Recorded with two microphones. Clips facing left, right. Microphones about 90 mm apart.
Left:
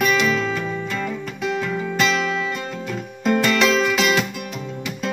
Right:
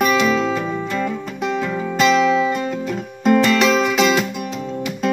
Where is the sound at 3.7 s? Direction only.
35° right (ahead or behind).